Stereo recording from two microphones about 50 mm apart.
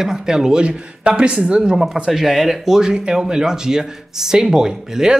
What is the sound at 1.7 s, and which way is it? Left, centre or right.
Speech, centre.